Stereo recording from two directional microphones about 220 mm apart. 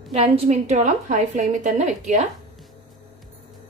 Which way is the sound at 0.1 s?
30° right (ahead or behind).